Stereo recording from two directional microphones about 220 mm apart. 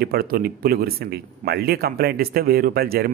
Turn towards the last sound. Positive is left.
turn(degrees=-45)  # may be behind; listen again after turning